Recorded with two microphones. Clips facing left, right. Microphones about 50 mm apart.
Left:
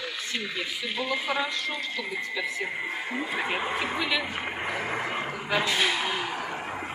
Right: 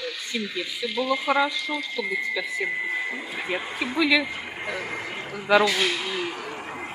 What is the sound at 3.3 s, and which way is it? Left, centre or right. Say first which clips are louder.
Speech: left 1 dB; left.